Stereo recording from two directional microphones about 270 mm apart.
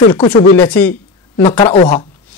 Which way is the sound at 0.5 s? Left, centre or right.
Centre.